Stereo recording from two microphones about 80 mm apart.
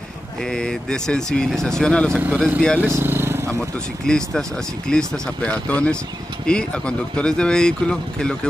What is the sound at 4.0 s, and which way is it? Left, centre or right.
Speech, centre.